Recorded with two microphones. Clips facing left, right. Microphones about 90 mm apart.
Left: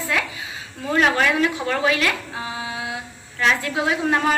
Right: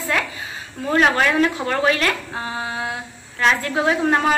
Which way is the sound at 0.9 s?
30° right (ahead or behind).